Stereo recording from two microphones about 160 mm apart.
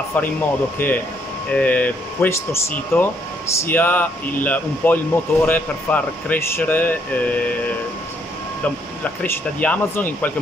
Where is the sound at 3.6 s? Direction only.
10° left (ahead or behind).